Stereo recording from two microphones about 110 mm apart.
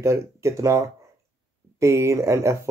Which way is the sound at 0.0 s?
25° right (ahead or behind).